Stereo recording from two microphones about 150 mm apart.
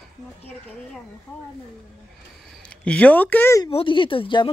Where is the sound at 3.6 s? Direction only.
35° left (ahead or behind).